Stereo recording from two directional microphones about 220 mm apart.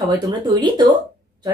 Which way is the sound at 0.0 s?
20° right (ahead or behind).